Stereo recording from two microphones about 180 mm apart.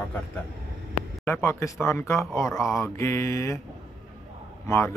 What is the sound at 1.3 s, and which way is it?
Speech, 15° left (ahead or behind).